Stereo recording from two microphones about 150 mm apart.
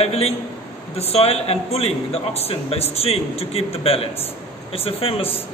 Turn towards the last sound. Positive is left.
turn(degrees=40)  # may be behind; listen again after turning